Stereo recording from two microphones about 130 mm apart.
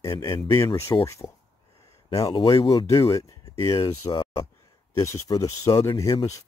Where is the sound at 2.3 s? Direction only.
40° left (ahead or behind).